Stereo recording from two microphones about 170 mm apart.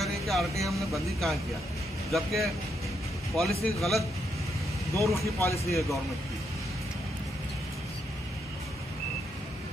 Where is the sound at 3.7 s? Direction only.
Centre (ahead or behind).